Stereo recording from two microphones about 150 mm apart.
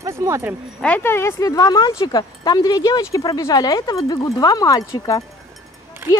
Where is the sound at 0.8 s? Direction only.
10° left (ahead or behind).